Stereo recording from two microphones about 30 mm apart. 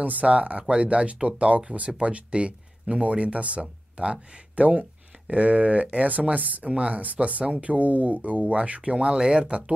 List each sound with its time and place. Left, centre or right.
0.0 s speech: right
0.3 s speech: right
5.3 s speech: right
6.0 s speech: right
6.7 s speech: right
7.0 s speech: right
9.0 s speech: right